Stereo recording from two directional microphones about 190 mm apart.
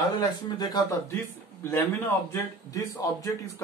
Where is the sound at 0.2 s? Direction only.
20° left (ahead or behind).